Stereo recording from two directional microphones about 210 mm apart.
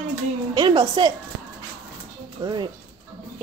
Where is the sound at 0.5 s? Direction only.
20° right (ahead or behind).